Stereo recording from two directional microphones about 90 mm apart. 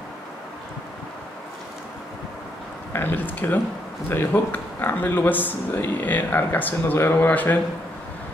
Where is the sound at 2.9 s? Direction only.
20° left (ahead or behind).